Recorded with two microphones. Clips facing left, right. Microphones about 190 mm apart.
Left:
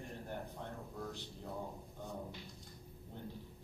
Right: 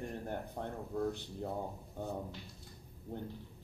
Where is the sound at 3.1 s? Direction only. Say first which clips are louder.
Right 7 dB; 55° right (ahead or behind).